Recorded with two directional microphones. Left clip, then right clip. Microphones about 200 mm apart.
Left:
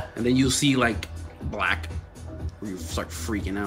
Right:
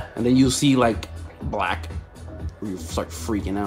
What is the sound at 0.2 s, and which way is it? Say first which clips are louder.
Speech: right 3 dB; 20° right (ahead or behind).